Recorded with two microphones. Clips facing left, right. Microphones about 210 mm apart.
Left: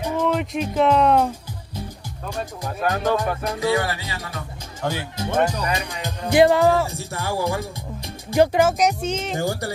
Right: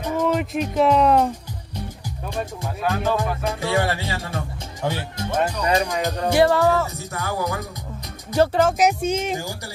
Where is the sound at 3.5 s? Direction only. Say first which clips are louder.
Left 1 dB; 30° right (ahead or behind).